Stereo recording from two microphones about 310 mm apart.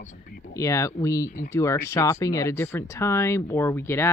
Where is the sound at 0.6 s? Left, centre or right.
Centre.